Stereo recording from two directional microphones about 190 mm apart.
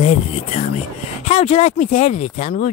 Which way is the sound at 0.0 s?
35° left (ahead or behind).